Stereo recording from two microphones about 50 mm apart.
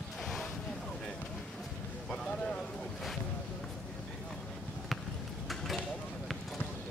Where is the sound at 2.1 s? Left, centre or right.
Centre.